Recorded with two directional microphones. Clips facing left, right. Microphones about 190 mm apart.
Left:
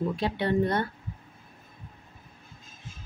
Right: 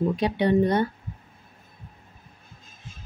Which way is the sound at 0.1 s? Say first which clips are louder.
Right 5 dB; 15° right (ahead or behind).